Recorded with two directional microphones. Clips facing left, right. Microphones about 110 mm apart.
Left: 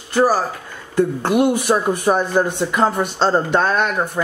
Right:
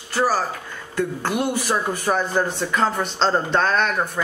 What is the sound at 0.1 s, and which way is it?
Speech, 15° left (ahead or behind).